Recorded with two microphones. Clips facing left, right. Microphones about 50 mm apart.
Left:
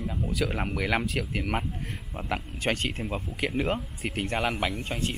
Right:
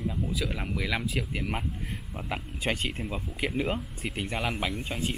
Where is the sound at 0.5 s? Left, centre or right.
Left.